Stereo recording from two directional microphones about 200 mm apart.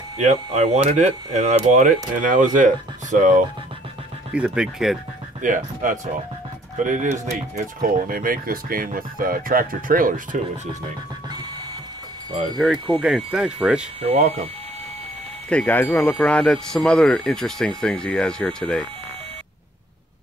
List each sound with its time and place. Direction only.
0.2 s speech: 35° right (ahead or behind)
4.3 s speech: 5° right (ahead or behind)
5.4 s speech: 40° right (ahead or behind)
12.5 s speech: centre (ahead or behind)
14.0 s speech: 30° right (ahead or behind)
15.5 s speech: 10° left (ahead or behind)